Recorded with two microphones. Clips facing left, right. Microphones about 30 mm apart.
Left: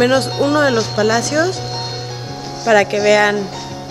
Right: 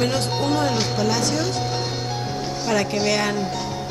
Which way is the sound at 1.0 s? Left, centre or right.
Left.